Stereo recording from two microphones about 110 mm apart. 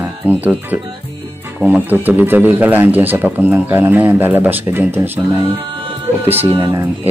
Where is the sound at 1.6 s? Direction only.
15° right (ahead or behind).